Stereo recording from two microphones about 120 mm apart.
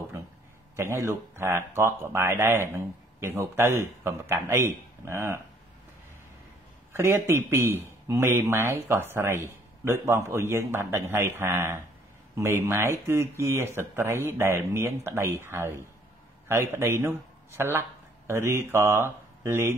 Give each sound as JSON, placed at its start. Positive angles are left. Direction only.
{"t": 0.7, "sound": "speech", "side_deg": -20}
{"t": 6.9, "sound": "speech", "side_deg": -20}